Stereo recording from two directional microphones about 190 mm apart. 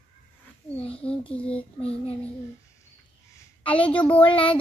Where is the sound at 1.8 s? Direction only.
30° left (ahead or behind).